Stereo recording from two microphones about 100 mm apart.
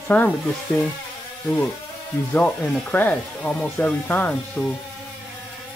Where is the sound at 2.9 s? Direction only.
15° left (ahead or behind).